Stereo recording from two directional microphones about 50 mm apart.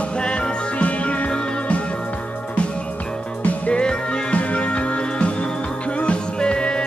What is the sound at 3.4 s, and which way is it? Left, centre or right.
Music, left.